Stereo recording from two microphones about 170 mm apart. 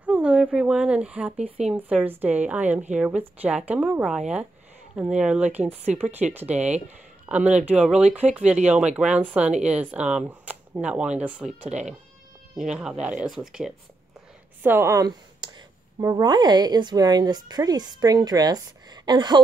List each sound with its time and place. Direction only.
0.0 s speech: 5° right (ahead or behind)
5.6 s speech: 40° right (ahead or behind)
6.3 s speech: 10° right (ahead or behind)
14.6 s speech: 15° right (ahead or behind)